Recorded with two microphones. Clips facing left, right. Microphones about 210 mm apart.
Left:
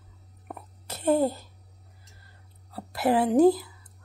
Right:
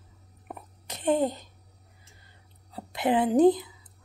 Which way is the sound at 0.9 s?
10° left (ahead or behind).